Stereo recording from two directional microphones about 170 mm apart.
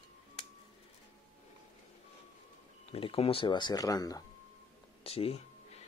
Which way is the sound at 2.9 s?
35° left (ahead or behind).